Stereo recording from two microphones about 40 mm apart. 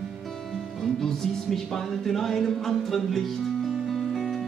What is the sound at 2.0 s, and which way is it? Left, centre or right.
Music, centre.